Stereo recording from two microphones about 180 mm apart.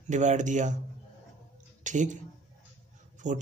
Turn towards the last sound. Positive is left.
turn(degrees=-45)  # may be behind; listen again after turning